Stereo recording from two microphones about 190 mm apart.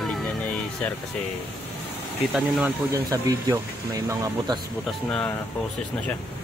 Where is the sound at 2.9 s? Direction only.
15° right (ahead or behind).